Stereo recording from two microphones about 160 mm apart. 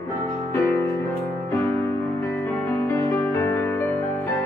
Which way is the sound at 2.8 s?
15° left (ahead or behind).